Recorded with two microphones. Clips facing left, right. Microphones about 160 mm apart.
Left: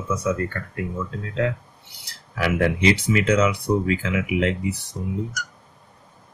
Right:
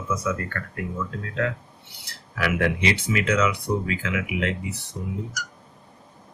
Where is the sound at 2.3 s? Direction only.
35° left (ahead or behind).